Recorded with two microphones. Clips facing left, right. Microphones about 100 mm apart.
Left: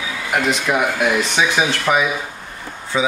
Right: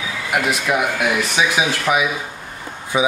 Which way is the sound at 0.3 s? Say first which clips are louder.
Left 1 dB; 5° right (ahead or behind).